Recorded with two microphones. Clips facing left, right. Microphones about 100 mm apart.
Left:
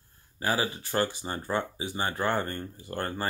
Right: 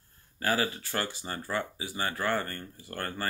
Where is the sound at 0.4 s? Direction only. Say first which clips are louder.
Even; 20° left (ahead or behind).